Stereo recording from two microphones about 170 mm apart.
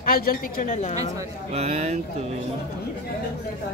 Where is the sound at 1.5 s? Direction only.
40° right (ahead or behind).